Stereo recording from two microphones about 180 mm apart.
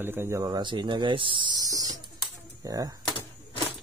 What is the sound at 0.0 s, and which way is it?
Mantra, 15° right (ahead or behind).